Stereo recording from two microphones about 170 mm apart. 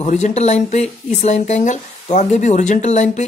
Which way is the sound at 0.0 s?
40° left (ahead or behind).